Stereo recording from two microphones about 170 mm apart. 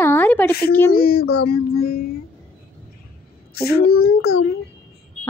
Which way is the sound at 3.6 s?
65° left (ahead or behind).